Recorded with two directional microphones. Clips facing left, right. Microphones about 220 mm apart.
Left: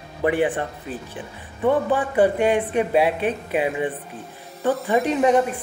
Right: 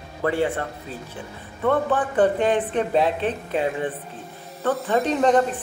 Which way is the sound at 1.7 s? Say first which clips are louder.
Left 1 dB; 10° left (ahead or behind).